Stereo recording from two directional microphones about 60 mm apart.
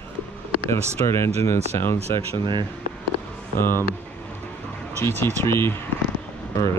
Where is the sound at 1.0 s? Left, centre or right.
Left.